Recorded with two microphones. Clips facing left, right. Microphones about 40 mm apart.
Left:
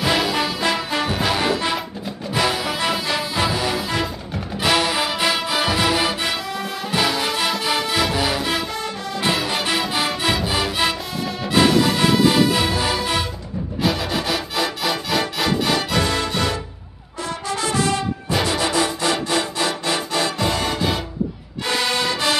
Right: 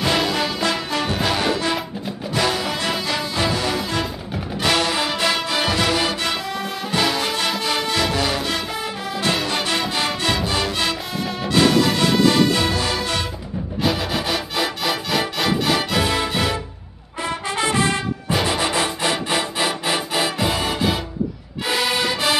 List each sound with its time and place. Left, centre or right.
0.0 s music: centre
17.5 s music: right
19.3 s music: centre